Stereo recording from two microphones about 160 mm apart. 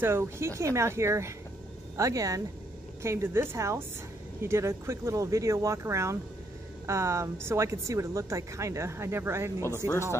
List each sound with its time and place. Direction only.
0.0 s speech: 15° right (ahead or behind)